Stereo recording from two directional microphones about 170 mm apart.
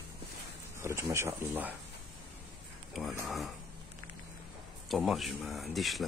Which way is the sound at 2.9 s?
Centre (ahead or behind).